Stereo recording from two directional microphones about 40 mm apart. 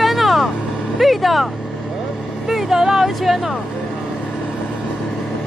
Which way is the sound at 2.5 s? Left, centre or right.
Centre.